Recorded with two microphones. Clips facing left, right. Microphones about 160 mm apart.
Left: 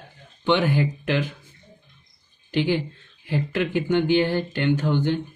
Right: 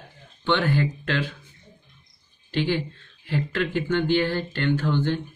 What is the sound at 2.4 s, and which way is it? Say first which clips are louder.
Speech: left 2 dB; 15° left (ahead or behind).